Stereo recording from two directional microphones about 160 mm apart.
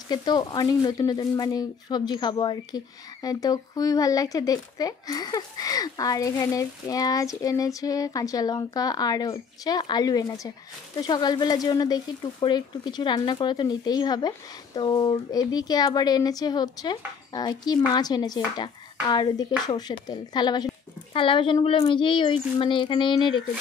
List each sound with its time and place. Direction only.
0.1 s speech: 25° left (ahead or behind)